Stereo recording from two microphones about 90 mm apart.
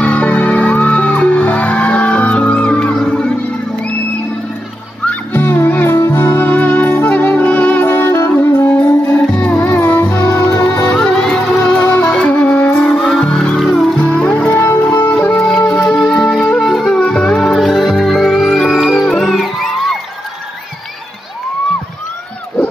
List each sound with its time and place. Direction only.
0.0 s music: 15° left (ahead or behind)
5.0 s music: 20° left (ahead or behind)
9.3 s music: 15° left (ahead or behind)
11.8 s music: 20° left (ahead or behind)
13.6 s music: centre (ahead or behind)
14.0 s music: 15° left (ahead or behind)
14.6 s music: 25° left (ahead or behind)
15.3 s music: 5° left (ahead or behind)